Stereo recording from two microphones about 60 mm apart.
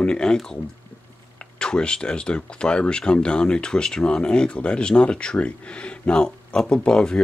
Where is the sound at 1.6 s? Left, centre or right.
Centre.